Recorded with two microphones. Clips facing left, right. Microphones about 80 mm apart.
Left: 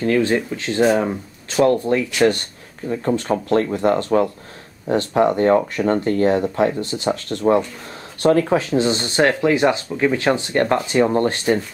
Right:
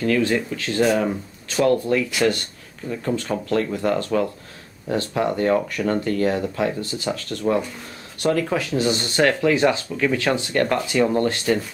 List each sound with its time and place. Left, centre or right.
0.0 s speech: left